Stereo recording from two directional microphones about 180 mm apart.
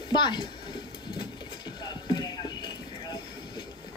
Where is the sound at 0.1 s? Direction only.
25° left (ahead or behind).